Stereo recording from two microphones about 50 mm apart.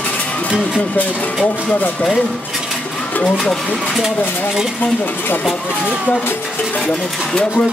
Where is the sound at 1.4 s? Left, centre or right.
Left.